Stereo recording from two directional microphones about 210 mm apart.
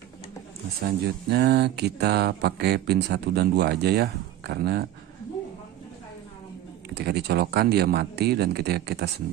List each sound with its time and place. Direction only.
0.7 s speech: 50° right (ahead or behind)
6.9 s speech: 50° right (ahead or behind)